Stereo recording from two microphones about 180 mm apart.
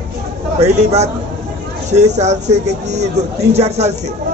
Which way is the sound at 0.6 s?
35° right (ahead or behind).